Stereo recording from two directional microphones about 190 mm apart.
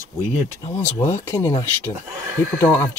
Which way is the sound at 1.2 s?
15° left (ahead or behind).